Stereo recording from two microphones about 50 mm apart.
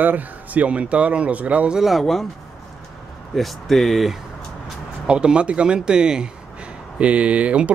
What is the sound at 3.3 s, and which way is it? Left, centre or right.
Speech, centre.